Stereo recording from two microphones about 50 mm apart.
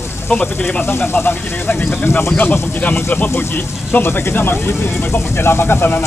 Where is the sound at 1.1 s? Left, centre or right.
Left.